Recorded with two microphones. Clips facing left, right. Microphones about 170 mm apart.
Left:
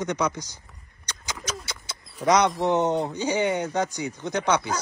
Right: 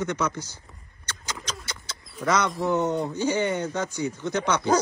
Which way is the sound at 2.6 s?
20° left (ahead or behind).